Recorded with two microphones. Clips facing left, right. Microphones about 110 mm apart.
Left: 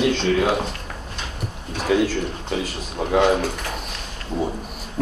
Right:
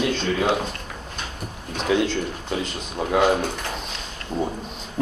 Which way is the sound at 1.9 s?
Centre (ahead or behind).